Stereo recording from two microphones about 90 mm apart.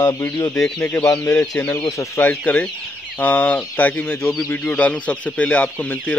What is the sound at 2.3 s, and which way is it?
Speech, 15° left (ahead or behind).